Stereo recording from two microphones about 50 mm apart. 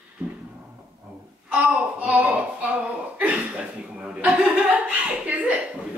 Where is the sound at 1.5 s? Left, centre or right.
Right.